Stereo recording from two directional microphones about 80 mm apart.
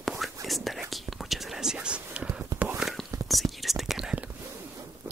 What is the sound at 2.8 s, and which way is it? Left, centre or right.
Whispering, centre.